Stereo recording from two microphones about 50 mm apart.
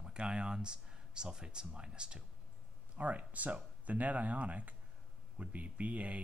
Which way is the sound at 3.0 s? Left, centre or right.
Right.